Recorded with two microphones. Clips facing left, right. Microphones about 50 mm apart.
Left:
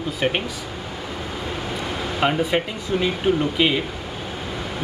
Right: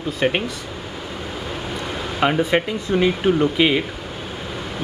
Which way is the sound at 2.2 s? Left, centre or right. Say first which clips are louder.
Right 3 dB; centre.